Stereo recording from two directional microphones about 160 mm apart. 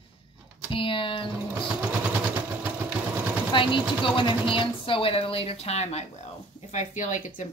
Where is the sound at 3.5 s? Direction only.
30° left (ahead or behind).